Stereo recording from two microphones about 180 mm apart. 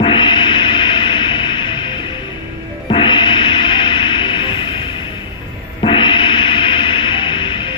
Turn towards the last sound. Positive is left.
turn(degrees=25)  # may be behind; listen again after turning